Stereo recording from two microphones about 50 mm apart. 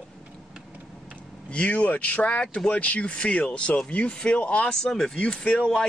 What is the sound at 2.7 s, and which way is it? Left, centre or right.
Speech, left.